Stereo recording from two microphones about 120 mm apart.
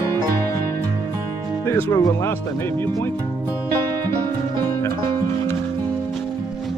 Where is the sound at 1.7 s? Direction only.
20° left (ahead or behind).